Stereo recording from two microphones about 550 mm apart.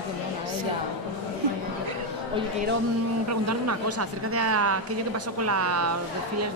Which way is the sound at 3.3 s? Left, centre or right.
Right.